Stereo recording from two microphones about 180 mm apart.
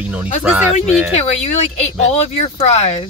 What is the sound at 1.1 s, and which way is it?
Speech, 35° left (ahead or behind).